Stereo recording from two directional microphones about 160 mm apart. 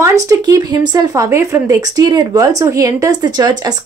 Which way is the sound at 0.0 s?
20° right (ahead or behind).